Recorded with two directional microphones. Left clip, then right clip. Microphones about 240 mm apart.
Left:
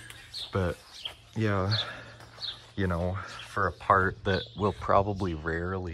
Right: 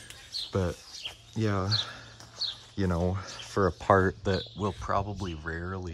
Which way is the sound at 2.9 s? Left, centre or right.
Right.